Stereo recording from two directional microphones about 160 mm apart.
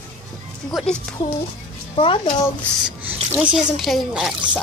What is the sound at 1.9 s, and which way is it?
Speech, 30° left (ahead or behind).